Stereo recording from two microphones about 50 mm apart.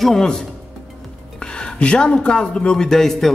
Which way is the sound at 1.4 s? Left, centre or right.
Centre.